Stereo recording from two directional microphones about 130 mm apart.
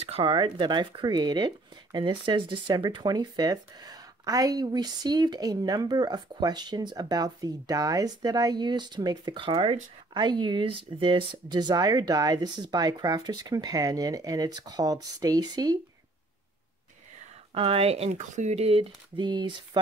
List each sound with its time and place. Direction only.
0.0 s speech: 50° right (ahead or behind); by 15.8 s 30° right (ahead or behind)
17.6 s speech: 50° right (ahead or behind)
19.1 s speech: 35° right (ahead or behind)